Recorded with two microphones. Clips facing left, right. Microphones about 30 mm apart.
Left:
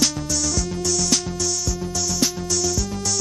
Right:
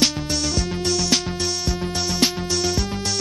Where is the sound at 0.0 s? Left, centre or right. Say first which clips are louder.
Right 1 dB; right.